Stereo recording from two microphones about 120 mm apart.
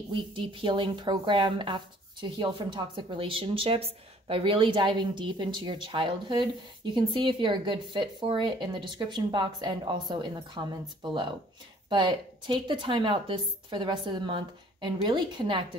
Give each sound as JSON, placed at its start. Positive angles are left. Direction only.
{"t": 0.1, "sound": "a woman's voice", "side_deg": -45}